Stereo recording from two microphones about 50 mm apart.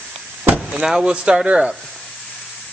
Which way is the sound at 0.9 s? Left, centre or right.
Centre.